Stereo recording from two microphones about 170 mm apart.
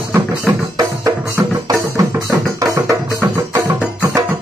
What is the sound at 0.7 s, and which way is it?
Music, 20° right (ahead or behind).